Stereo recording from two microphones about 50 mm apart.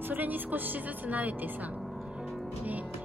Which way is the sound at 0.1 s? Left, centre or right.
Right.